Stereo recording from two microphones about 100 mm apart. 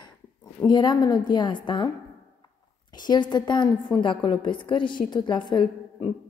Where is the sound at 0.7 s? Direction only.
45° left (ahead or behind).